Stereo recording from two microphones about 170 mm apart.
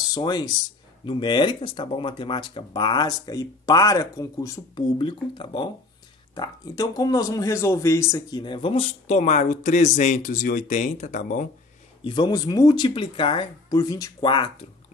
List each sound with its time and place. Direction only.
0.1 s speech: 25° left (ahead or behind); by 11.4 s 50° left (ahead or behind)
12.0 s speech: 25° left (ahead or behind)